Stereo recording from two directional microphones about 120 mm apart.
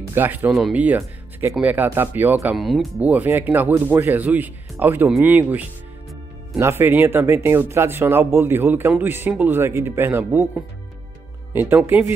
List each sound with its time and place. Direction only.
0.1 s speech: 15° right (ahead or behind)
0.5 s speech: centre (ahead or behind)
0.7 s speech: 15° right (ahead or behind)
2.5 s speech: centre (ahead or behind)
3.0 s speech: 15° right (ahead or behind)
11.7 s speech: 20° right (ahead or behind)